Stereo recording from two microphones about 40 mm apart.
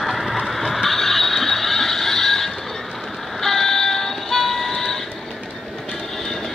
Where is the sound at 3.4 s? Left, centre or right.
Centre.